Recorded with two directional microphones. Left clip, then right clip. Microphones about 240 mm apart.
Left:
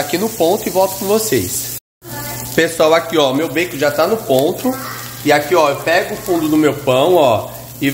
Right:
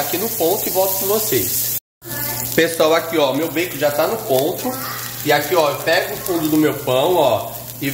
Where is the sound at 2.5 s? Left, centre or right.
Centre.